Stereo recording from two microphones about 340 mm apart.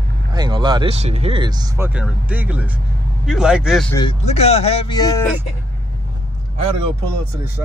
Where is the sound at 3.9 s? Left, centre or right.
Centre.